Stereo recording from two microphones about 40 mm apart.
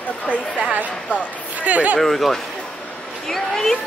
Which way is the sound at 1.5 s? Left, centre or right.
Right.